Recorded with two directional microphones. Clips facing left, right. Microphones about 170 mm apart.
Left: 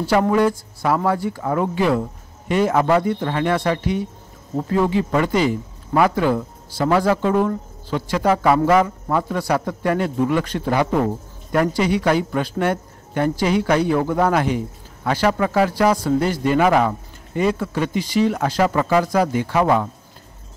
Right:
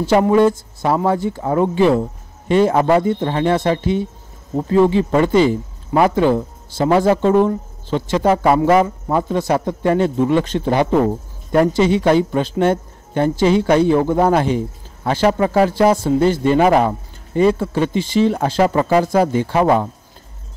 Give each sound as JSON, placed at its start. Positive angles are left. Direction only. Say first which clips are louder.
{"t": 0.3, "sound": "speech", "louder": "right 4 dB", "side_deg": -25}